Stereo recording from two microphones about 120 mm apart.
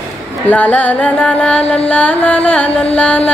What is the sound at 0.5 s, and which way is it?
Music, 15° left (ahead or behind).